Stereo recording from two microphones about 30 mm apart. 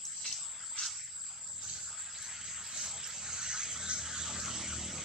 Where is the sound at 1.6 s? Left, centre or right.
Centre.